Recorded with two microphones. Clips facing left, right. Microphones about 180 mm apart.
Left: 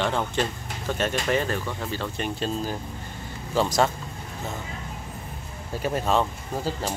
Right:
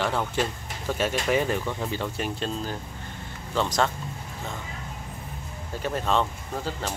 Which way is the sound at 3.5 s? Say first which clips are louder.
Left 3 dB; 10° left (ahead or behind).